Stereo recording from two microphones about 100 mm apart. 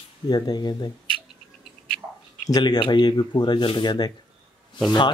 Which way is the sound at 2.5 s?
45° left (ahead or behind).